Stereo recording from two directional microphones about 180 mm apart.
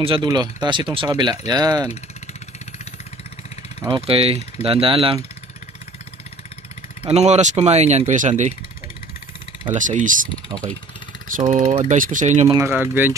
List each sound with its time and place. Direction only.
0.0 s speech: 25° right (ahead or behind)
3.8 s speech: 30° right (ahead or behind)
7.1 s speech: 40° right (ahead or behind)
9.8 s speech: 45° right (ahead or behind)
10.5 s speech: 20° right (ahead or behind)
11.3 s speech: 45° right (ahead or behind)
12.4 s speech: 15° right (ahead or behind)